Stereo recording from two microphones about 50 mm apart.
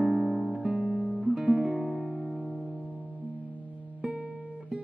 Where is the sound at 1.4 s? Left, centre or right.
Right.